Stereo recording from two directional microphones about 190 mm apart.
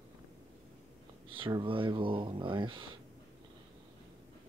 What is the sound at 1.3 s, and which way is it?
Speech, 25° right (ahead or behind).